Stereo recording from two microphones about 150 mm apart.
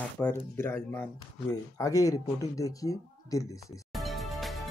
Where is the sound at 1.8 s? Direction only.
25° left (ahead or behind).